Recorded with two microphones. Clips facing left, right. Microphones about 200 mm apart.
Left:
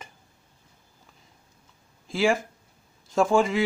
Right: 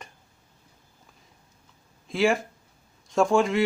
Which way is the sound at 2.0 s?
Centre (ahead or behind).